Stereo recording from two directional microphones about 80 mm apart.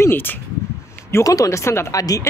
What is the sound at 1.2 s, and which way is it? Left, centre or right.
Speech, left.